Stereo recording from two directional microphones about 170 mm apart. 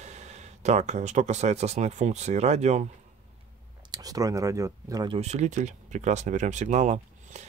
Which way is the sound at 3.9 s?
20° right (ahead or behind).